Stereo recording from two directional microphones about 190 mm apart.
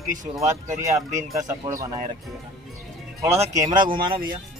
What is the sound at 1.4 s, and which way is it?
Speech, 20° right (ahead or behind).